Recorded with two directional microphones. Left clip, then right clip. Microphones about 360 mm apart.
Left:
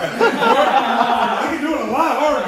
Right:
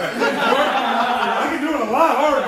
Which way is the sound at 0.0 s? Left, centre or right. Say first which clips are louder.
Left 3 dB; centre.